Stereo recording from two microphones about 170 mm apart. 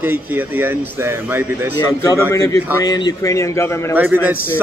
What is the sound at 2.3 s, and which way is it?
A man's voice, 20° left (ahead or behind).